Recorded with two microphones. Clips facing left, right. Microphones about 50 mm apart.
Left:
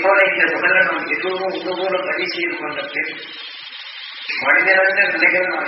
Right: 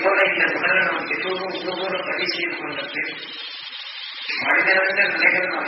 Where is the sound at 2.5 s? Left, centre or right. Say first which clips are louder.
Left 4 dB; left.